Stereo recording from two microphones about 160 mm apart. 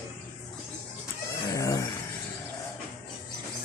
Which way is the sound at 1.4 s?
20° left (ahead or behind).